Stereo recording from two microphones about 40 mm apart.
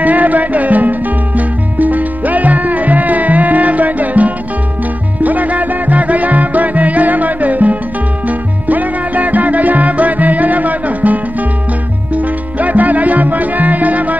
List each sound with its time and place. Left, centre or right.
0.0 s music: right
12.1 s salsa music: right